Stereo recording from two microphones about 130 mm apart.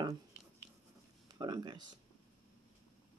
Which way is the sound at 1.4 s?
35° right (ahead or behind).